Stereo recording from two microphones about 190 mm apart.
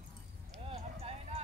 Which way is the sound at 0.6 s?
30° right (ahead or behind).